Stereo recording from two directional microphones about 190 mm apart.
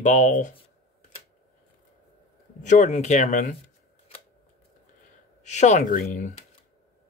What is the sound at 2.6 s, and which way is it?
Speech, 40° left (ahead or behind).